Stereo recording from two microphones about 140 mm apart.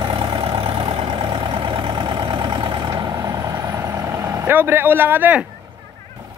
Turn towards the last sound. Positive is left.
turn(degrees=-15)  # may be behind; listen again after turning